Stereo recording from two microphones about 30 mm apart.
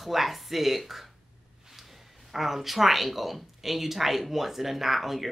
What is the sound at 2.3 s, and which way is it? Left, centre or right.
Speech, centre.